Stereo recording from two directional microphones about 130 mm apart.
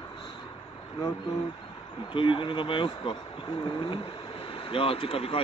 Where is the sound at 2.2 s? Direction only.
40° left (ahead or behind).